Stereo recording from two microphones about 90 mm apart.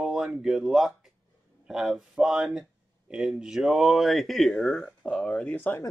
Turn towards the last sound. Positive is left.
turn(degrees=20)  # may be behind; listen again after turning